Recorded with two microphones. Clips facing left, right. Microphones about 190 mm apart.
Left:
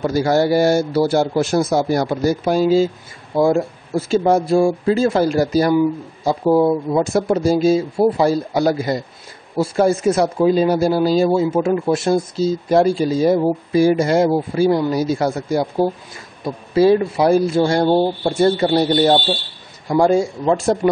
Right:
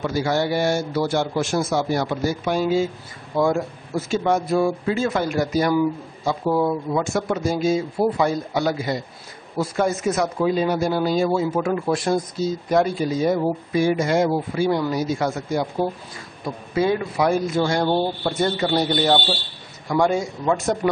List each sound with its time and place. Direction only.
0.0 s speech: 40° left (ahead or behind)